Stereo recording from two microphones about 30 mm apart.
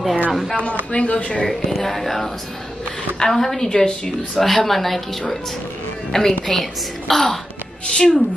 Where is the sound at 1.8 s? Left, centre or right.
Centre.